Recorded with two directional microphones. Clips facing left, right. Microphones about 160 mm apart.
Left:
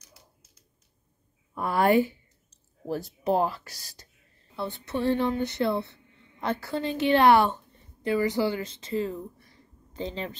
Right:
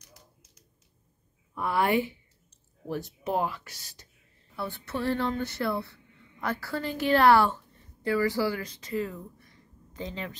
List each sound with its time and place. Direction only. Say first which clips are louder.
1.5 s speech: left 4 dB; 40° left (ahead or behind)
4.6 s a woman's voice: left 3 dB; 20° left (ahead or behind)